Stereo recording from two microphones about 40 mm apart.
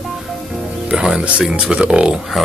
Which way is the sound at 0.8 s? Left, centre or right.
Right.